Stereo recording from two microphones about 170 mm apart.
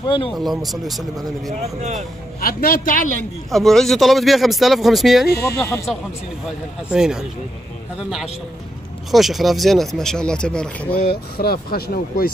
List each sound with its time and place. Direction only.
0.0 s speech: 30° left (ahead or behind)
0.3 s speech: centre (ahead or behind)
1.8 s speech: 45° right (ahead or behind)
2.4 s speech: 55° left (ahead or behind)
3.5 s speech: centre (ahead or behind)
5.6 s speech: 15° left (ahead or behind)
6.9 s speech: 5° right (ahead or behind)
9.1 s speech: centre (ahead or behind)
11.0 s speech: 65° left (ahead or behind)